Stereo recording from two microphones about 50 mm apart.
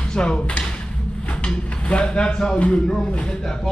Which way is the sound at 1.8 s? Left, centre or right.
Left.